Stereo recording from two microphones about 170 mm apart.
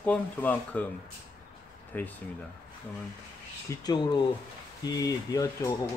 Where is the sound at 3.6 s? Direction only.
25° left (ahead or behind).